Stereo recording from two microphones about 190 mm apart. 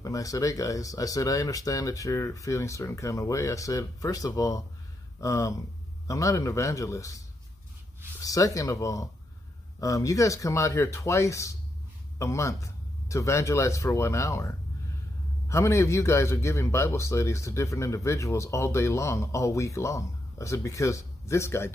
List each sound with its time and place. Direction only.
0.0 s a man's voice: 15° left (ahead or behind)